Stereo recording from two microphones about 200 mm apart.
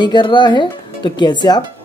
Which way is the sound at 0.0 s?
25° left (ahead or behind).